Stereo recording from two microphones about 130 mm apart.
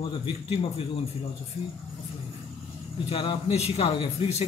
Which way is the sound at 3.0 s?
50° left (ahead or behind).